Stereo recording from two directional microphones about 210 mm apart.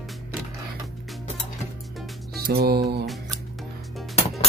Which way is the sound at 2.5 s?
50° right (ahead or behind).